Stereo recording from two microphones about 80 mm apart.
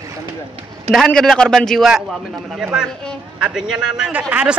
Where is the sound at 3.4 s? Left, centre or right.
Centre.